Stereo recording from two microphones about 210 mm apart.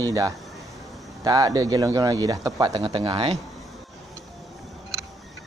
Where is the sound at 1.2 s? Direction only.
15° right (ahead or behind).